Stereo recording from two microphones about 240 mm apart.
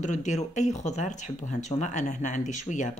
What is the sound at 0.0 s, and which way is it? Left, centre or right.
Speech, left.